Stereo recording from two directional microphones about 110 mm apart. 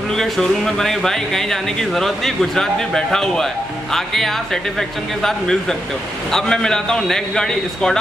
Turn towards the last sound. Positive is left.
turn(degrees=5)  # may be behind; listen again after turning